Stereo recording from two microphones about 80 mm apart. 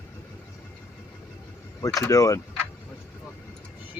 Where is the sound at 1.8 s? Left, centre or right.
Left.